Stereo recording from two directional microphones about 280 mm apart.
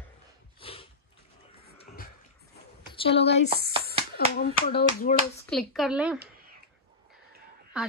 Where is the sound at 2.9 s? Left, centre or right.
Centre.